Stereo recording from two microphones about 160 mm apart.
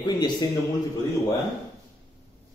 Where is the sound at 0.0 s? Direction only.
30° left (ahead or behind).